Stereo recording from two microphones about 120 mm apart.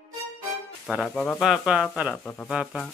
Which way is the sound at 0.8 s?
Centre (ahead or behind).